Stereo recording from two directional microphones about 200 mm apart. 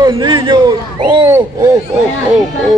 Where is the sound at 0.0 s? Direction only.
25° right (ahead or behind).